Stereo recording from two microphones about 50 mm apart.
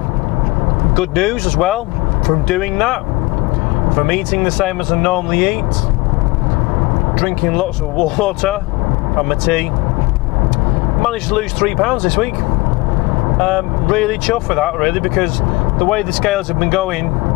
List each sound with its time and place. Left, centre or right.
0.9 s speech: centre
7.2 s speech: centre
11.0 s speech: centre
13.4 s speech: centre